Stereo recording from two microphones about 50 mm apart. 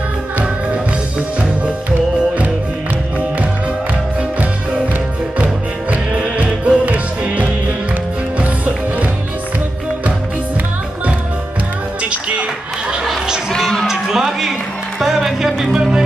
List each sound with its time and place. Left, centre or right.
5.4 s music: right
12.0 s music: right
13.8 s music: centre